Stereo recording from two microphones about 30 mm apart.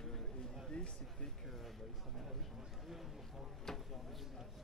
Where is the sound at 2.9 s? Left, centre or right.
Centre.